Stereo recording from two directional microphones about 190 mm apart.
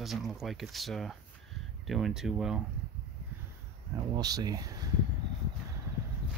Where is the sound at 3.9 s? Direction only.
20° right (ahead or behind).